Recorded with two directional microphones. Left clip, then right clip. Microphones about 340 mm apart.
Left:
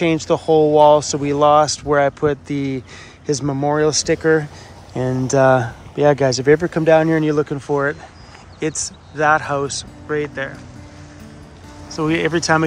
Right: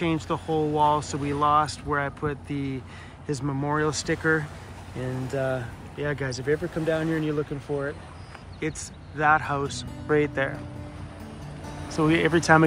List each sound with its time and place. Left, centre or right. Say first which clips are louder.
0.0 s speech: left 10 dB; centre
5.3 s speech: left 15 dB; left
5.9 s speech: left 16 dB; centre
6.5 s speech: left 10 dB; left
6.9 s speech: left 13 dB; centre
8.5 s speech: left 9 dB; centre
11.9 s speech: left 4 dB; centre